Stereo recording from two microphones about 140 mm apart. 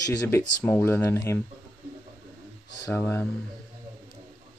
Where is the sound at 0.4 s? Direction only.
15° left (ahead or behind).